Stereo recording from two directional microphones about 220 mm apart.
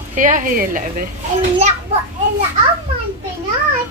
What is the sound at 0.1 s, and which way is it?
Speech, 35° right (ahead or behind).